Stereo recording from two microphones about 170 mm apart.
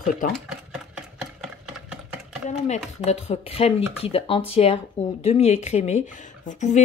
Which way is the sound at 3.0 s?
40° left (ahead or behind).